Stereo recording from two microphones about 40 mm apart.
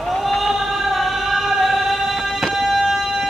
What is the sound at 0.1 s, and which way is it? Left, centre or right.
Singing, centre.